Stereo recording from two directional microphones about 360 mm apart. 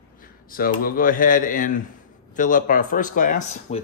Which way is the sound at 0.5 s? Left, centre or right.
Left.